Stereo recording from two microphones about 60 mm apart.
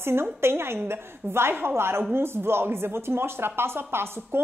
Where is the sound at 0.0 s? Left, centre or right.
Right.